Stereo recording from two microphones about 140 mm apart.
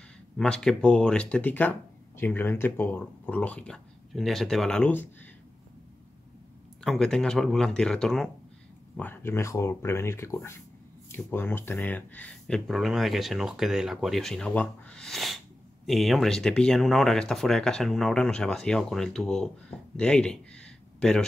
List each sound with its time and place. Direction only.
0.4 s speech: 5° left (ahead or behind)
6.8 s speech: 5° left (ahead or behind)
8.9 s speech: 15° left (ahead or behind)